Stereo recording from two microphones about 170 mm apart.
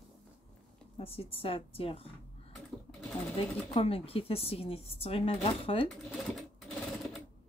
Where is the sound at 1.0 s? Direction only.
35° left (ahead or behind).